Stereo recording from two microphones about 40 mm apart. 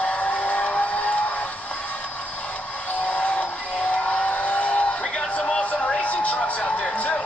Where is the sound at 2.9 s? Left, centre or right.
Left.